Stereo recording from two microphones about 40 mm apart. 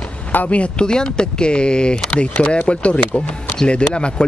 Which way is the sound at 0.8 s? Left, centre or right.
Centre.